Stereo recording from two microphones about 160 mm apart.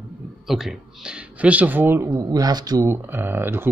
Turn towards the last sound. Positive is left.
turn(degrees=-15)  # may be behind; listen again after turning